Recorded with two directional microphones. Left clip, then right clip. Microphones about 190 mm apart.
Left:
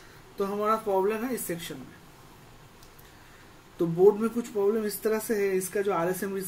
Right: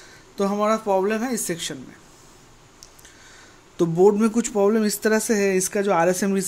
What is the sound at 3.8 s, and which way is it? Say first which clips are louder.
Speech: right 4 dB; 50° right (ahead or behind).